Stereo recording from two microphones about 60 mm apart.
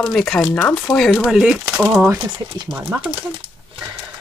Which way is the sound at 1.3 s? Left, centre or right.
Centre.